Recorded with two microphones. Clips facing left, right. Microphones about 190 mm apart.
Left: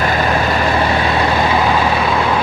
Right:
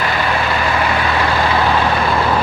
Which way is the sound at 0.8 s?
25° left (ahead or behind).